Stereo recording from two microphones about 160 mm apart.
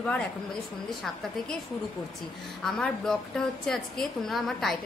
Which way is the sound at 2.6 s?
5° left (ahead or behind).